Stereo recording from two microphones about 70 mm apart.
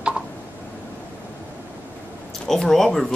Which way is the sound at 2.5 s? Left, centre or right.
Centre.